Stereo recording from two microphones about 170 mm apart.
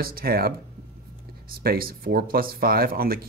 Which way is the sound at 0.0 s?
60° right (ahead or behind).